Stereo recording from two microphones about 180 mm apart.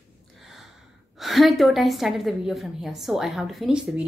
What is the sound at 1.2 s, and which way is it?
A woman's voice, centre (ahead or behind).